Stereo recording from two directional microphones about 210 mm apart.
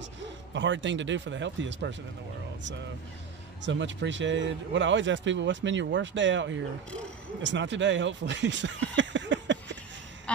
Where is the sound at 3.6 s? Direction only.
60° right (ahead or behind).